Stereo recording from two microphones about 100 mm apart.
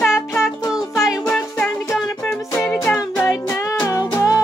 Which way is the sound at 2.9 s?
20° left (ahead or behind).